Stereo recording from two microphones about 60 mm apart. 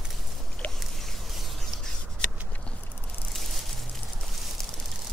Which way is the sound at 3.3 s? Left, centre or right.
Centre.